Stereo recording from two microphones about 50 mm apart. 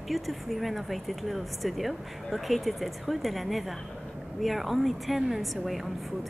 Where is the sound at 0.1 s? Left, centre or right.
Centre.